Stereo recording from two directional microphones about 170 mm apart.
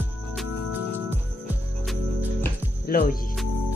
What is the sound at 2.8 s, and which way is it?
Speech, 60° left (ahead or behind).